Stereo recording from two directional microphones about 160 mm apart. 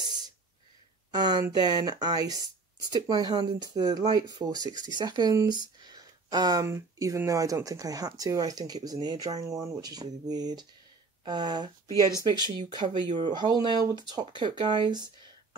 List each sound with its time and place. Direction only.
1.1 s speech: 25° right (ahead or behind)